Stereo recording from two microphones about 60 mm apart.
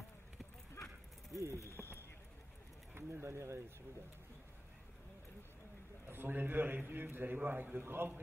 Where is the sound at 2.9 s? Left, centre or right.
Right.